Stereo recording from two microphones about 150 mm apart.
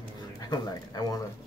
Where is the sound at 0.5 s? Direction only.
25° left (ahead or behind).